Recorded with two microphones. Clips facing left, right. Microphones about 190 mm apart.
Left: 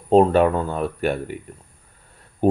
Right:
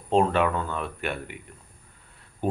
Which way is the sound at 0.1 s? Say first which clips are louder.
Left 7 dB; 40° left (ahead or behind).